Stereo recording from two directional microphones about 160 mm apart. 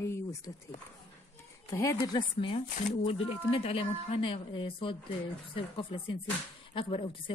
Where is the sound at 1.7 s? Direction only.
20° left (ahead or behind).